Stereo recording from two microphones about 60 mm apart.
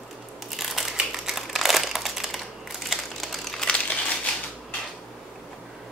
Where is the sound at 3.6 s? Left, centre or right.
Centre.